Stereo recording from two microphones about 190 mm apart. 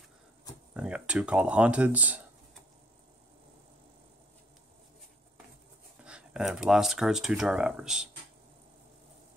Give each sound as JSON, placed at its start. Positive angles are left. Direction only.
{"t": 0.7, "sound": "speech", "side_deg": -5}
{"t": 6.0, "sound": "speech", "side_deg": -5}